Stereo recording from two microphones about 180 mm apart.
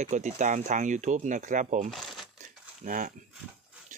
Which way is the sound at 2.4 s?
45° right (ahead or behind).